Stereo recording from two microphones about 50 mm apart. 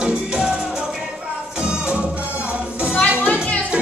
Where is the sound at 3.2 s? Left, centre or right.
Left.